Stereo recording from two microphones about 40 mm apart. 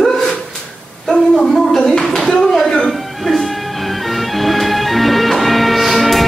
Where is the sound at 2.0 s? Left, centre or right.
Centre.